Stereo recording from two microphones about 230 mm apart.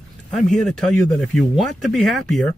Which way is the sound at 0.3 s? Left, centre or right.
Centre.